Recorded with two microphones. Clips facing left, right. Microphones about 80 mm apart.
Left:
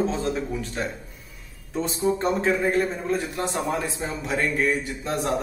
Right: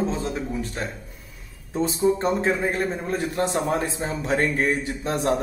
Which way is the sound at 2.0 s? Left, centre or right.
Right.